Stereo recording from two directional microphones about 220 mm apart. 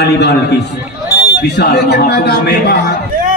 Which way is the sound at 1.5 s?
50° left (ahead or behind).